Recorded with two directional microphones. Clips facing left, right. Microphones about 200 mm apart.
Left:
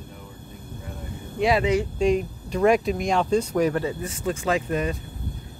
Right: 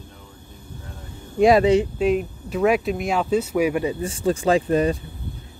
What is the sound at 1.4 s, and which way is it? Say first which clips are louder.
Speech: right 7 dB; 40° right (ahead or behind).